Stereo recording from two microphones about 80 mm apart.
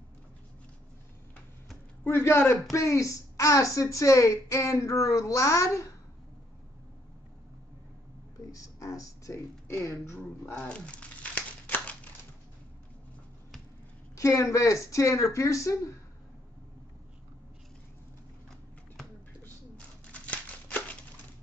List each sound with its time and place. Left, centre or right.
2.0 s speech: left
8.5 s speech: left
10.5 s crumpling: centre
11.7 s a sound: centre
14.1 s speech: left
20.1 s crumpling: centre